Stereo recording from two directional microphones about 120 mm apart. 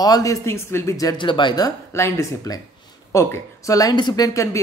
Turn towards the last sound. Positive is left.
turn(degrees=25)  # may be behind; listen again after turning